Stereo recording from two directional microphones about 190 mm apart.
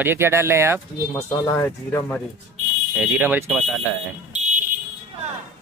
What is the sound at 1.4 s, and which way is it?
Speech, 15° left (ahead or behind).